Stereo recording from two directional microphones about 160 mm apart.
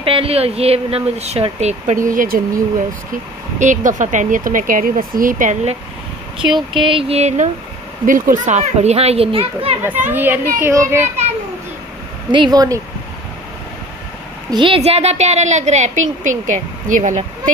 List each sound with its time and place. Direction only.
0.0 s speech: 35° right (ahead or behind); by 2.4 s 60° right (ahead or behind)
3.5 s speech: 50° right (ahead or behind)
6.7 s speech: 30° right (ahead or behind)
8.5 s speech: 45° right (ahead or behind)
9.8 s a child's voice: 10° right (ahead or behind)
12.3 s speech: 25° right (ahead or behind)
14.5 s speech: 30° right (ahead or behind)
14.8 s a woman's voice: 40° right (ahead or behind)